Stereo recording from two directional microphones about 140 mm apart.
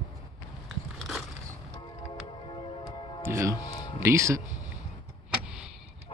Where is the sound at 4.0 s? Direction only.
20° right (ahead or behind).